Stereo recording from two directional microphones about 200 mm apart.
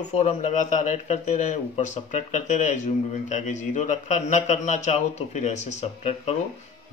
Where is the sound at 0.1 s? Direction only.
35° left (ahead or behind).